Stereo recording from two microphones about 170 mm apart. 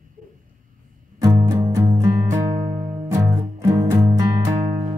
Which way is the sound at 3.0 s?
20° right (ahead or behind).